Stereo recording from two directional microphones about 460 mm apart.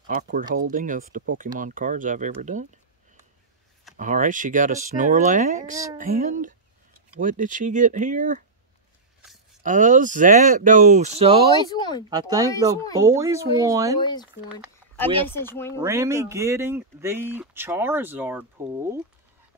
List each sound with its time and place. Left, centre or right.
0.0 s speech: centre
3.9 s speech: centre
9.6 s speech: centre
11.6 s speech: centre
12.1 s speech: centre
15.2 s speech: centre
15.8 s speech: centre